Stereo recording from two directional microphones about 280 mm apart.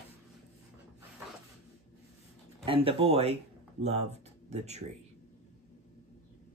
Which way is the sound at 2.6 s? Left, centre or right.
Right.